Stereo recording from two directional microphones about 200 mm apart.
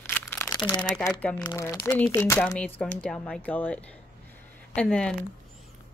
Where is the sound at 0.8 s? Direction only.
5° left (ahead or behind).